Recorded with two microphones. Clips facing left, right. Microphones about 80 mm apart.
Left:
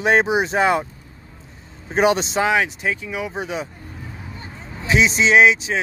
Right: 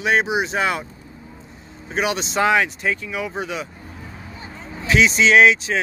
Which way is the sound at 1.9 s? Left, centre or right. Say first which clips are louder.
Left 6 dB; left.